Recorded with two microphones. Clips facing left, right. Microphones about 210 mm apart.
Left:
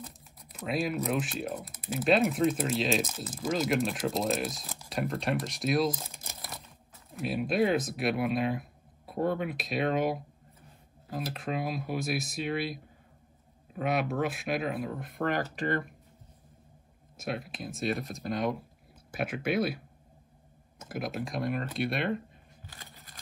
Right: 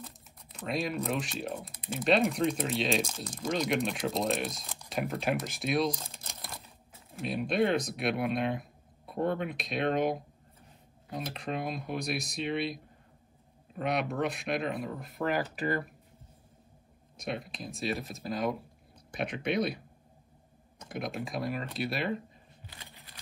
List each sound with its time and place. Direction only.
0.6 s speech: 5° left (ahead or behind)
7.2 s speech: 5° left (ahead or behind)
17.2 s speech: 5° left (ahead or behind)
20.8 s speech: 5° left (ahead or behind)
22.7 s a sound: 45° left (ahead or behind)